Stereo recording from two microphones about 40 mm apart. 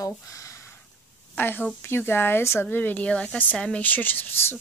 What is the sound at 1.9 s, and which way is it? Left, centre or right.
Speech, left.